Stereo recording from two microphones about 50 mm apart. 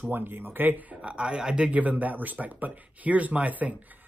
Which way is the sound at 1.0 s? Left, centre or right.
Centre.